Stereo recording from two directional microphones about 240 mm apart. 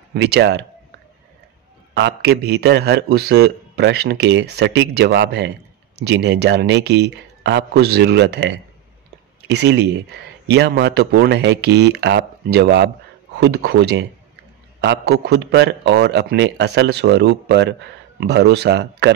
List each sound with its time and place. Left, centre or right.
0.1 s a man's voice: right
2.0 s a man's voice: right